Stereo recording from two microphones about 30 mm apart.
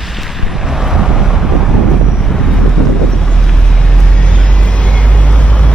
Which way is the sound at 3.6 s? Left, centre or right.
Left.